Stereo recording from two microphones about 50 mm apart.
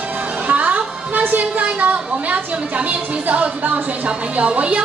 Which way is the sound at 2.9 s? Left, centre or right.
Right.